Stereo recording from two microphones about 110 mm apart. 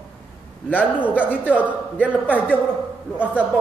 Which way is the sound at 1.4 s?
15° left (ahead or behind).